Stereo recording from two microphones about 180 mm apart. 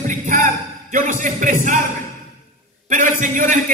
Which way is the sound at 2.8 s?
45° right (ahead or behind).